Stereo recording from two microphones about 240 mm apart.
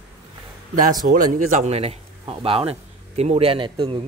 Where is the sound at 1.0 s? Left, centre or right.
Right.